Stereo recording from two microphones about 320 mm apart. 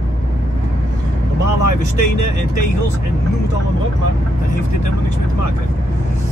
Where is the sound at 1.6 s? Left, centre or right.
Right.